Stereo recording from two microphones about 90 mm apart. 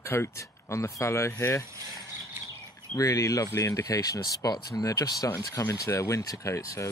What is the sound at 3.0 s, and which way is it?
Speech, 35° left (ahead or behind).